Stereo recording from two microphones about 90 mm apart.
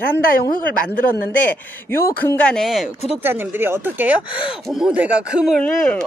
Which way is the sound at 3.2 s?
25° right (ahead or behind).